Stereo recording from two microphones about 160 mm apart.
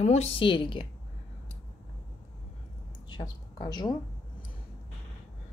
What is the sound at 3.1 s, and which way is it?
Speech, 25° left (ahead or behind).